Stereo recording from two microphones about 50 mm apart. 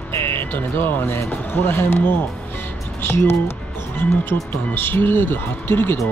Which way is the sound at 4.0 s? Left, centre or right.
Left.